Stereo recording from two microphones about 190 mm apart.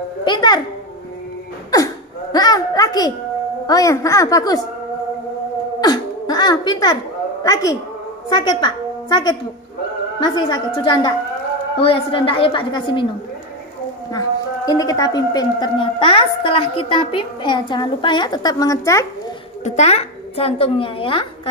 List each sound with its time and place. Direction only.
0.2 s a woman's voice: 25° left (ahead or behind)
2.3 s a woman's voice: 20° left (ahead or behind)
5.8 s cough: 20° left (ahead or behind)
7.4 s a woman's voice: 20° left (ahead or behind)
14.7 s a woman's voice: 20° left (ahead or behind)
19.6 s a child's voice: 35° left (ahead or behind)